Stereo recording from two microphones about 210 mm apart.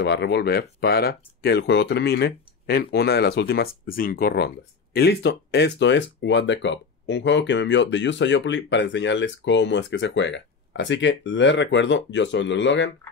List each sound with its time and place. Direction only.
0.0 s speech: 55° left (ahead or behind)